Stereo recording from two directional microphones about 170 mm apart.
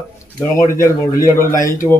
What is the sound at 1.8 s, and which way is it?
Speech, 35° left (ahead or behind).